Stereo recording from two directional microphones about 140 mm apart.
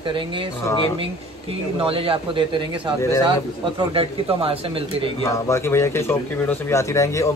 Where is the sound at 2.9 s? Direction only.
20° left (ahead or behind).